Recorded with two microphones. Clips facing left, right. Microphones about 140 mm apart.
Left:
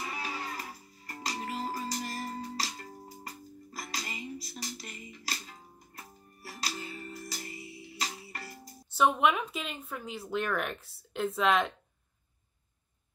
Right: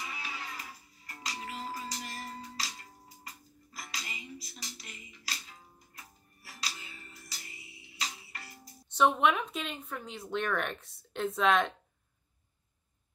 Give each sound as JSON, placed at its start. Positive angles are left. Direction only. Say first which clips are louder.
{"t": 0.1, "sound": "music", "louder": "left 5 dB", "side_deg": 40}
{"t": 8.8, "sound": "speech", "louder": "even", "side_deg": 5}